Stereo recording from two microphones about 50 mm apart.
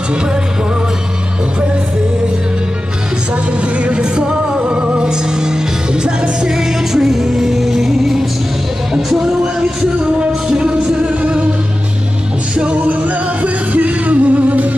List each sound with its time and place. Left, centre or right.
3.6 s music: right
12.5 s music: right